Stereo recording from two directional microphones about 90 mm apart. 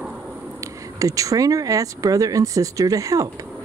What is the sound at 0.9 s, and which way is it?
Speech, 40° right (ahead or behind).